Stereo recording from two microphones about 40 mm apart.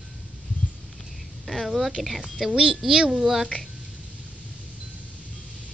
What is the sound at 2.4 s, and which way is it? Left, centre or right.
A woman's voice, centre.